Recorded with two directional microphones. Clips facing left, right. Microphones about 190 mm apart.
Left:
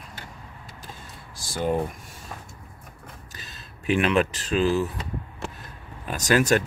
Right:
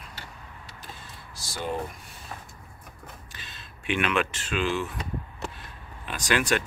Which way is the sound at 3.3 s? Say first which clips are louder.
Left 2 dB; 40° left (ahead or behind).